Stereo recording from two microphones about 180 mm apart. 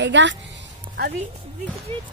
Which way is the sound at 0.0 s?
90° right.